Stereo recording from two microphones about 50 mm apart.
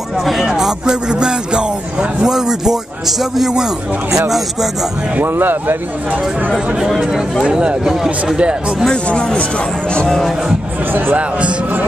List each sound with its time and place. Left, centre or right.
0.2 s speech: centre
5.2 s speech: right
7.5 s speech: centre
8.4 s speech: centre
8.9 s speech: centre
10.9 s speech: right
11.1 s speech: right